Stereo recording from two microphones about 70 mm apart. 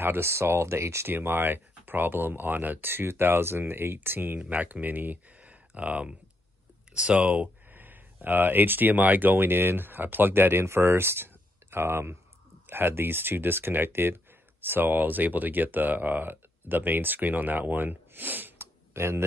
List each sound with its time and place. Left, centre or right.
0.0 s speech: right